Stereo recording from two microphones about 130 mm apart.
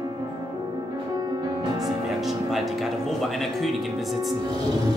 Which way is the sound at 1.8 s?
Centre (ahead or behind).